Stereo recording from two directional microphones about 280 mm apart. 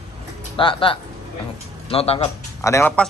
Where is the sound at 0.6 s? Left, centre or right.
Centre.